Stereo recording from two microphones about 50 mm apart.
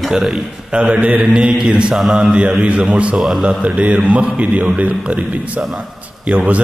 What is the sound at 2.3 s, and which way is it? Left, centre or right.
Mantra, right.